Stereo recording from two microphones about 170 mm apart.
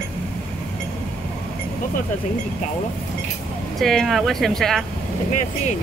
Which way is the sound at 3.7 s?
Centre (ahead or behind).